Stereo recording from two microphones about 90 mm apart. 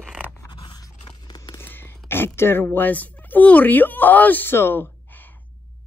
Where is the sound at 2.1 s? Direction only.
25° left (ahead or behind).